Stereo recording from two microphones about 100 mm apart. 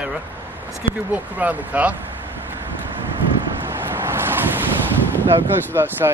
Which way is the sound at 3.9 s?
20° right (ahead or behind).